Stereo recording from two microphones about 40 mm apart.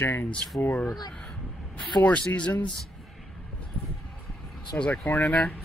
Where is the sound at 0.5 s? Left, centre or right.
Left.